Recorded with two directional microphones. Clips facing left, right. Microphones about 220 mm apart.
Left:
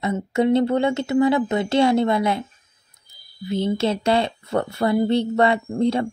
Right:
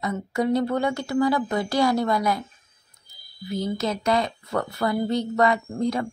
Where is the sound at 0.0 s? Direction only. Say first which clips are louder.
Left 5 dB; 25° left (ahead or behind).